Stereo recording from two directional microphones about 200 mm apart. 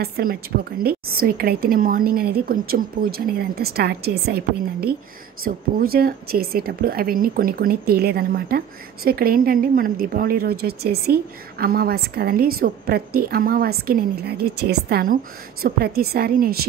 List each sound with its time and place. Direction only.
0.0 s speech: 45° right (ahead or behind)